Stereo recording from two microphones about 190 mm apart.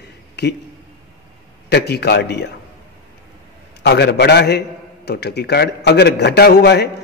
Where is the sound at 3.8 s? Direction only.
65° left (ahead or behind).